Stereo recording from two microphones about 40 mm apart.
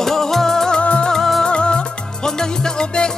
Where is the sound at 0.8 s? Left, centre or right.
Left.